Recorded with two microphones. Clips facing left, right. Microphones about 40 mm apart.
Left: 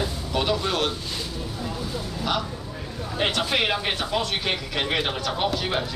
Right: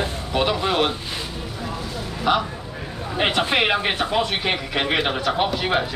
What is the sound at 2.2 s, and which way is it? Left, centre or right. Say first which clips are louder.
Speech: right 7 dB; right.